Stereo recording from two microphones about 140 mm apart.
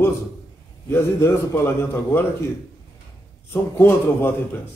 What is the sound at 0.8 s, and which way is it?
A man's voice, 20° left (ahead or behind).